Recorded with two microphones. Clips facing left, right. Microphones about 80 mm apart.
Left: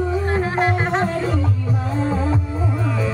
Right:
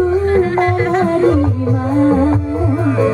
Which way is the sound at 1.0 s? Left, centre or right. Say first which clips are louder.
Right 9 dB; right.